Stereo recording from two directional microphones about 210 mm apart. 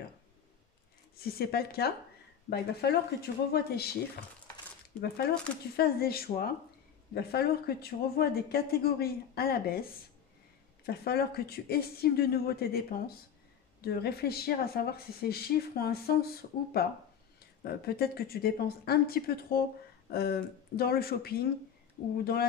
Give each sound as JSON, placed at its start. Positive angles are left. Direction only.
{"t": 1.1, "sound": "speech", "side_deg": 45}
{"t": 5.0, "sound": "speech", "side_deg": 50}
{"t": 10.9, "sound": "speech", "side_deg": 50}